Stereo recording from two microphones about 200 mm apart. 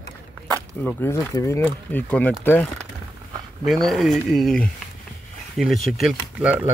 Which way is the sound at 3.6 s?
Centre (ahead or behind).